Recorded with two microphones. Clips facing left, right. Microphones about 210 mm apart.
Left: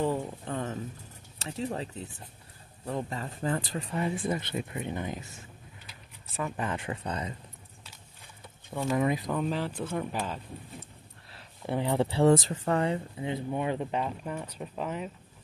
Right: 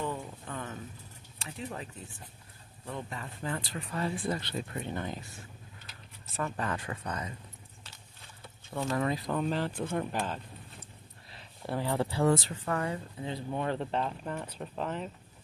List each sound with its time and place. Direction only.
0.0 s a sound: 35° left (ahead or behind)
1.4 s speech: 35° left (ahead or behind)
3.9 s speech: 20° left (ahead or behind)
6.3 s speech: 5° left (ahead or behind)
6.6 s speech: 20° left (ahead or behind)
8.9 s speech: 20° left (ahead or behind)
9.2 s speech: centre (ahead or behind)
11.6 s speech: 20° left (ahead or behind)